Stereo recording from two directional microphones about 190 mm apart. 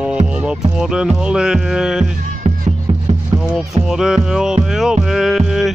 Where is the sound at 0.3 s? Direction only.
5° right (ahead or behind).